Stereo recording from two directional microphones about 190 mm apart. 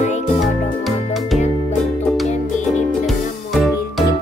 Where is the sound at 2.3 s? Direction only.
40° left (ahead or behind).